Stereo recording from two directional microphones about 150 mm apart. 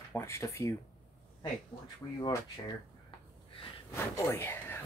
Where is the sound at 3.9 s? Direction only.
20° left (ahead or behind).